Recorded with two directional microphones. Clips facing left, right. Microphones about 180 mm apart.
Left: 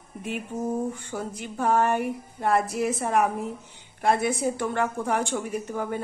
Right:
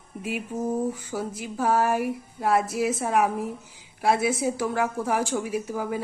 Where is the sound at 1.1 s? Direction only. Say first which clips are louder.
Right 2 dB; 5° right (ahead or behind).